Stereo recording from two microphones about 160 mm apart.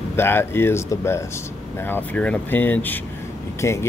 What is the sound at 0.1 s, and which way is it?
Speech, 15° left (ahead or behind).